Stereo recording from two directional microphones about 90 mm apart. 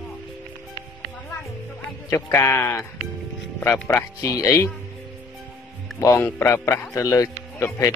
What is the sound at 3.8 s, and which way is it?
Speech, 35° left (ahead or behind).